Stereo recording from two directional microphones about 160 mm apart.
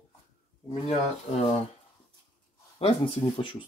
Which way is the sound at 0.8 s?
40° left (ahead or behind).